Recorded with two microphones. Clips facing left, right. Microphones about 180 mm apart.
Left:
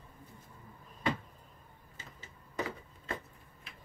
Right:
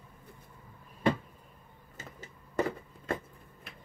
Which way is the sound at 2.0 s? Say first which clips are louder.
Right 6 dB; 45° right (ahead or behind).